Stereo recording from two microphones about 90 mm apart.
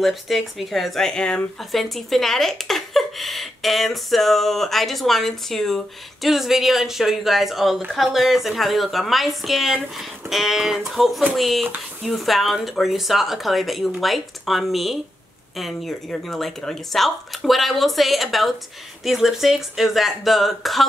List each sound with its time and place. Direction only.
0.0 s speech: centre (ahead or behind)